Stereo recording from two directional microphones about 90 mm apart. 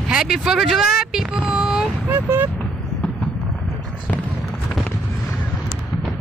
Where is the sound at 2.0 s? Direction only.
25° right (ahead or behind).